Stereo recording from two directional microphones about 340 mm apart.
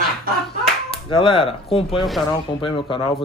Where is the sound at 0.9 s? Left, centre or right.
Centre.